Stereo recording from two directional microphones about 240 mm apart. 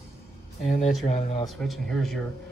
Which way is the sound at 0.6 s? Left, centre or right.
Left.